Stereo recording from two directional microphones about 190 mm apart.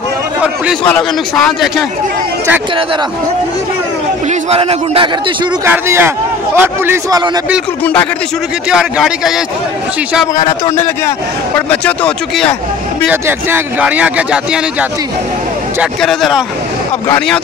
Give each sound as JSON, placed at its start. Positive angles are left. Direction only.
{"t": 0.8, "sound": "speech", "side_deg": 5}
{"t": 4.3, "sound": "a man's voice", "side_deg": -30}
{"t": 5.7, "sound": "speech", "side_deg": -10}
{"t": 7.8, "sound": "speech", "side_deg": 5}
{"t": 8.6, "sound": "speech", "side_deg": -5}
{"t": 11.1, "sound": "speech", "side_deg": 10}
{"t": 13.1, "sound": "speech", "side_deg": -10}